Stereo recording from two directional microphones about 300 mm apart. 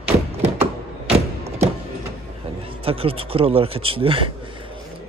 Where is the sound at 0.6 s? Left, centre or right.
Centre.